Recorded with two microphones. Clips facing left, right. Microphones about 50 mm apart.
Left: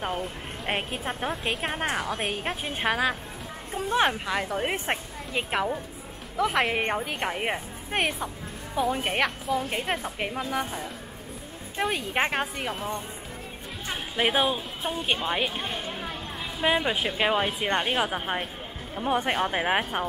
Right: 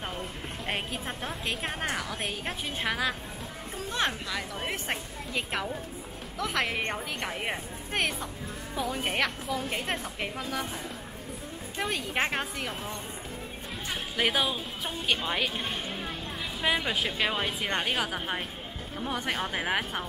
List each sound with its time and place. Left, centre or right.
0.7 s speech: centre
3.7 s a woman's voice: centre
4.3 s a woman's voice: left
11.8 s a woman's voice: centre